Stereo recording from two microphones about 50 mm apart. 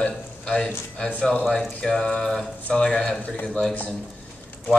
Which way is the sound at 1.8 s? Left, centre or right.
Centre.